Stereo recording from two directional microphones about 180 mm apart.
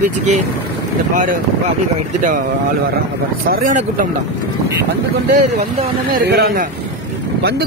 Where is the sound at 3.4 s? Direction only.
50° right (ahead or behind).